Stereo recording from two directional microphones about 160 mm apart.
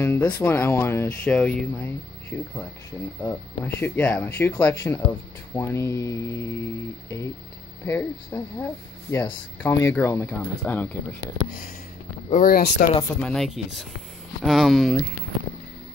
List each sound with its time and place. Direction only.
0.0 s a sound: 15° left (ahead or behind)
0.4 s speech: 15° left (ahead or behind)
12.3 s speech: 60° left (ahead or behind)
13.2 s speech: centre (ahead or behind)